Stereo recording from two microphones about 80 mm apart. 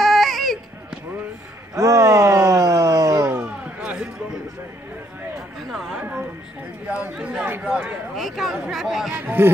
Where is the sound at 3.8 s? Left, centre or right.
Centre.